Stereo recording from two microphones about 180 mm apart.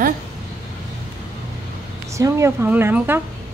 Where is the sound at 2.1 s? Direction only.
15° right (ahead or behind).